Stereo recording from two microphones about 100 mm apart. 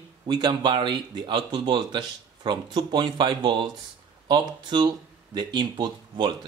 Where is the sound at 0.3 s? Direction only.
50° right (ahead or behind).